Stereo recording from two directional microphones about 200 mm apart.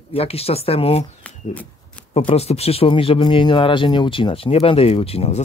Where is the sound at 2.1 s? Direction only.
30° left (ahead or behind).